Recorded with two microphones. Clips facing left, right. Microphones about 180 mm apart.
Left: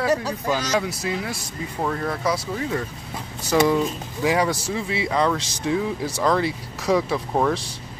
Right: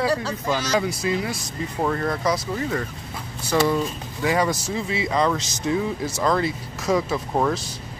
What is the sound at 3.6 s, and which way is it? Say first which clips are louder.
Speech: left 2 dB; 15° left (ahead or behind).